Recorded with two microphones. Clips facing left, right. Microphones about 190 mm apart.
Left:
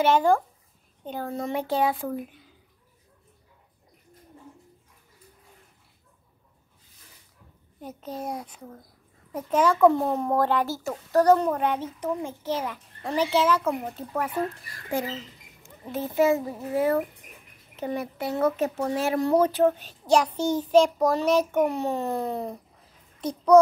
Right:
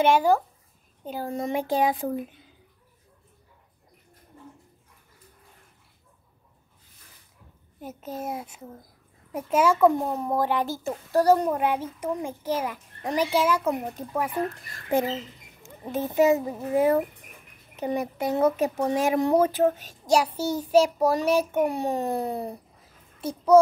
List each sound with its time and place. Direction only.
0.0 s speech: 10° right (ahead or behind)
7.8 s speech: 5° right (ahead or behind)
14.7 s speech: 25° right (ahead or behind); by 23.6 s 5° right (ahead or behind)